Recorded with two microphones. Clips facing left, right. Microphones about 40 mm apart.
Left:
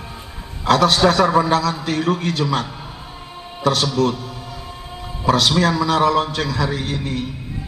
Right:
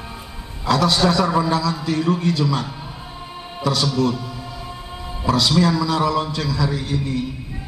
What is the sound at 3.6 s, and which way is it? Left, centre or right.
Speech, left.